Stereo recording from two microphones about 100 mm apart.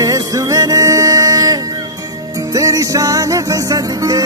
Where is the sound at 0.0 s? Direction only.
35° right (ahead or behind).